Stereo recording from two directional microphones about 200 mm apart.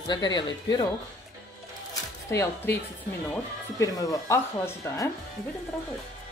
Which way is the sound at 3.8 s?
15° left (ahead or behind).